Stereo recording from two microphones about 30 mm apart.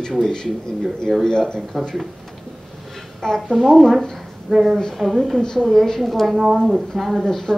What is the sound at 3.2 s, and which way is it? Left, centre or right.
Speech, left.